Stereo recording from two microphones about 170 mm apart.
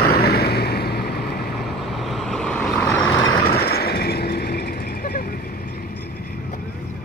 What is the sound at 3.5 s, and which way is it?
Vehicle, 65° left (ahead or behind).